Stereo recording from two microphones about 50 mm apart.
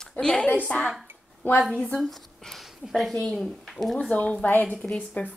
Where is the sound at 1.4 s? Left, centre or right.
Left.